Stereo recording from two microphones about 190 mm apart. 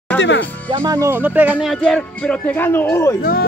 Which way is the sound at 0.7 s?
20° right (ahead or behind).